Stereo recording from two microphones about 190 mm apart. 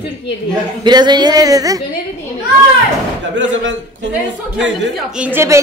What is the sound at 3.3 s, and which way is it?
Speech, 75° right (ahead or behind).